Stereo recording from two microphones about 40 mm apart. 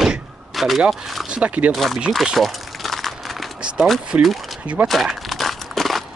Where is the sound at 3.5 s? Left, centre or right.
Right.